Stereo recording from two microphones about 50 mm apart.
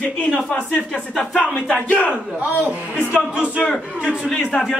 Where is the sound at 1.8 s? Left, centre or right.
Left.